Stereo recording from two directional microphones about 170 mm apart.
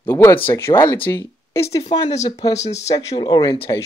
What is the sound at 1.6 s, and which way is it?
Speech, 35° left (ahead or behind).